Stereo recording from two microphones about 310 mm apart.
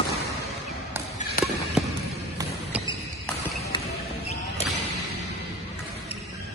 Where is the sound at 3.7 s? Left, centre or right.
Centre.